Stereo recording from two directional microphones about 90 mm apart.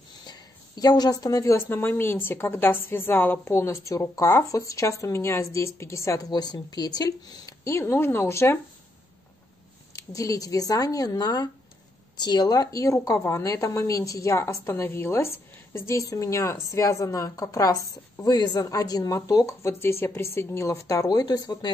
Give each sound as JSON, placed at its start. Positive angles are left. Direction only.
{"t": 0.3, "sound": "a woman's voice", "side_deg": 45}
{"t": 9.9, "sound": "a woman's voice", "side_deg": 40}